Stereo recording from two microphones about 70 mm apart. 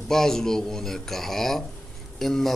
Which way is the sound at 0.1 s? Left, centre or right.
Centre.